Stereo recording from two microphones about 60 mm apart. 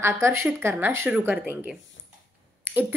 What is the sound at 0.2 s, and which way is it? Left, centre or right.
Speech, right.